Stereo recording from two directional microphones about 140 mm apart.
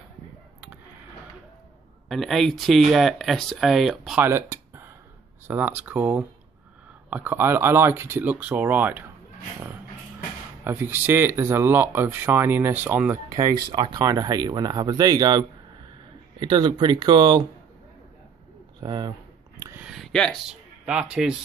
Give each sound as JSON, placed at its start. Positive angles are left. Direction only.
{"t": 2.0, "sound": "speech", "side_deg": 0}
{"t": 4.2, "sound": "a sound", "side_deg": -20}
{"t": 5.5, "sound": "speech", "side_deg": -15}
{"t": 7.1, "sound": "speech", "side_deg": -10}
{"t": 10.6, "sound": "speech", "side_deg": -15}
{"t": 13.7, "sound": "speech", "side_deg": -30}
{"t": 18.8, "sound": "speech", "side_deg": -30}
{"t": 19.8, "sound": "a sound", "side_deg": 0}
{"t": 20.8, "sound": "speech", "side_deg": -5}